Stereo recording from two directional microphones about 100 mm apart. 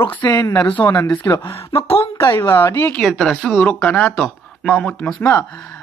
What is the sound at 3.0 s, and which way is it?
Speech, 5° left (ahead or behind).